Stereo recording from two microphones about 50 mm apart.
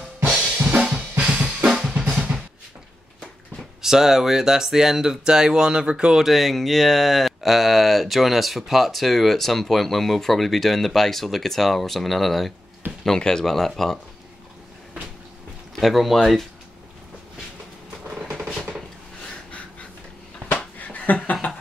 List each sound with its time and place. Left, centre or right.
0.2 s drum kit: right
3.8 s speech: centre
6.2 s speech: centre
15.8 s speech: centre
20.4 s a sound: left